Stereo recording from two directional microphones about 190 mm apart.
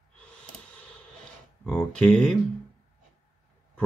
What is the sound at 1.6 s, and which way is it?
Speech, 5° left (ahead or behind).